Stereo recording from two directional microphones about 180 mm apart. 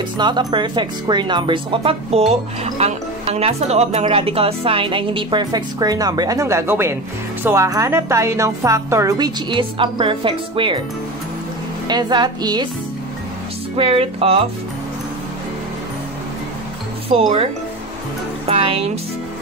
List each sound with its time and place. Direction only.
0.2 s a woman's voice: 25° right (ahead or behind)
11.9 s speech: 25° right (ahead or behind)
13.7 s music: 30° right (ahead or behind)
18.5 s speech: 30° right (ahead or behind)